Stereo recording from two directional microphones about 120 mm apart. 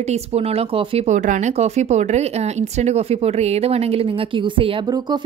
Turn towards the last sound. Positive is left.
turn(degrees=-45)  # may be behind; listen again after turning